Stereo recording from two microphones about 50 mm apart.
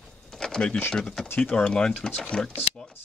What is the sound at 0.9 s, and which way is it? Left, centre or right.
Speech, centre.